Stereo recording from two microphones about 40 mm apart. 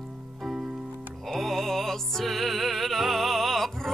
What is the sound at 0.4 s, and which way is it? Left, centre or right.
Music, centre.